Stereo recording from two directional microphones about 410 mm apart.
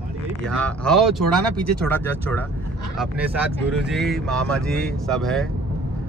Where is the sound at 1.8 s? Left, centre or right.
Centre.